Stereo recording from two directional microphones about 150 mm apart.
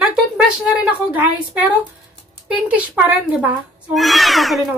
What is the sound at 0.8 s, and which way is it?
A woman's voice, 10° right (ahead or behind).